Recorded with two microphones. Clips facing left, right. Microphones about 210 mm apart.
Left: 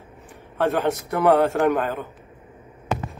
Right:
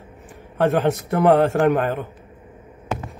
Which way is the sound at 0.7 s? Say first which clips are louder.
Right 3 dB; 15° right (ahead or behind).